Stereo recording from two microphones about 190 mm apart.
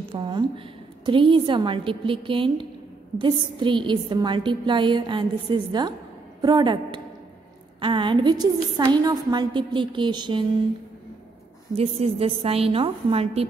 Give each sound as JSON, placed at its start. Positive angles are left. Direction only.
{"t": 0.1, "sound": "a woman's voice", "side_deg": -25}
{"t": 11.7, "sound": "a woman's voice", "side_deg": -30}